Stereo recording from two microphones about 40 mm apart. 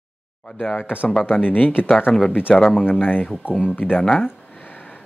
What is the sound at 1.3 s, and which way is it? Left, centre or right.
Speech, left.